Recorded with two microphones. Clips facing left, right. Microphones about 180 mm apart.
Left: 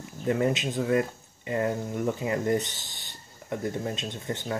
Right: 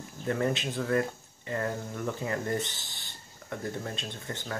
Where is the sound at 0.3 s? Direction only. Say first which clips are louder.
Left 4 dB; 15° left (ahead or behind).